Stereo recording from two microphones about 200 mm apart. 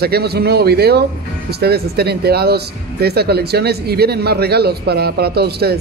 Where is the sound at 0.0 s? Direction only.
50° right (ahead or behind).